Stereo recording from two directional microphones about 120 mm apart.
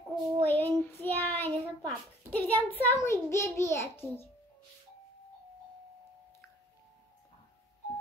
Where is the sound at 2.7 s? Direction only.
20° left (ahead or behind).